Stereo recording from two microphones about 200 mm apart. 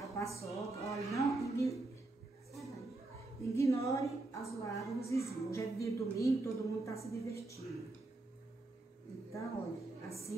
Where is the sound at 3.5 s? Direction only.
15° left (ahead or behind).